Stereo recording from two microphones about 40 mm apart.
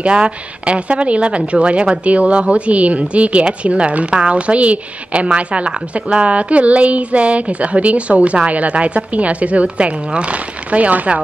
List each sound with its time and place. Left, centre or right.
0.0 s a woman's voice: right